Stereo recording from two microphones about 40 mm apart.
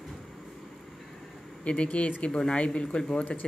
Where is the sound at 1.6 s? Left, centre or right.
Left.